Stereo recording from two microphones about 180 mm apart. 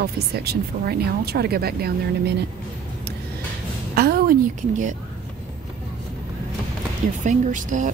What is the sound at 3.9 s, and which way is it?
A woman's voice, 60° right (ahead or behind).